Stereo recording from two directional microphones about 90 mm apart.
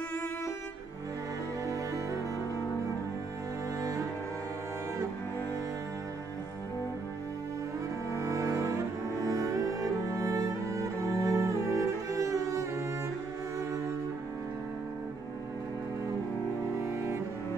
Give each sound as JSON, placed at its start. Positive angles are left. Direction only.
{"t": 8.2, "sound": "cello", "side_deg": -35}